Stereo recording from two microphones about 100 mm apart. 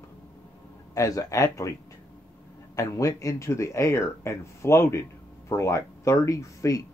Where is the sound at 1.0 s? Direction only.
35° left (ahead or behind).